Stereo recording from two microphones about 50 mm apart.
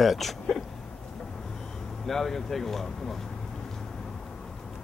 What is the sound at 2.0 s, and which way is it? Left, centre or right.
Speech, centre.